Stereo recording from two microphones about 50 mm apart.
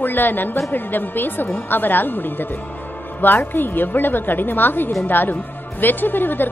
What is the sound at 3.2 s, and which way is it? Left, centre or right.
A woman's voice, left.